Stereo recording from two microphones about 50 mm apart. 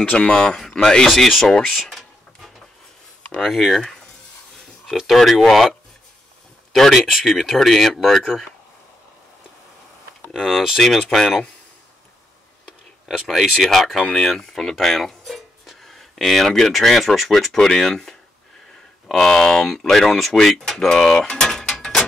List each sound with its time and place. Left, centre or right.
0.0 s speech: left
0.3 s speech: centre
1.0 s speech: centre
1.6 s a sound: centre
3.3 s speech: centre
4.9 s speech: centre
10.3 s speech: centre
10.8 s speech: centre
13.2 s speech: centre